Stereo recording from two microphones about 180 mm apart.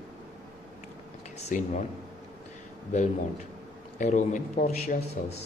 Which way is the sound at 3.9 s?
45° left (ahead or behind).